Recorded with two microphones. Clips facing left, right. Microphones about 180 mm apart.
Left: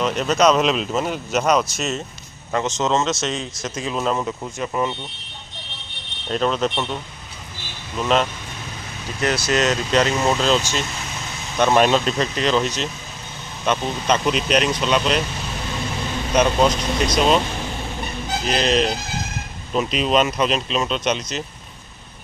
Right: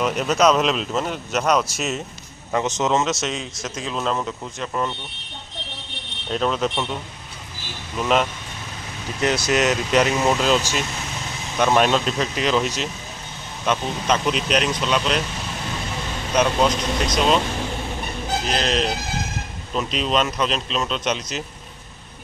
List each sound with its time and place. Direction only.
0.0 s speech: 5° right (ahead or behind)
6.3 s speech: centre (ahead or behind)
8.0 s speech: 5° right (ahead or behind)
9.2 s speech: 20° right (ahead or behind); by 15.2 s centre (ahead or behind)
16.3 s speech: centre (ahead or behind)
18.5 s speech: centre (ahead or behind)